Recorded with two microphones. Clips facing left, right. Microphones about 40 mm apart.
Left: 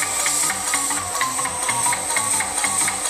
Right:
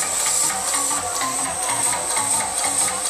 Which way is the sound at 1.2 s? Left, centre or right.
Left.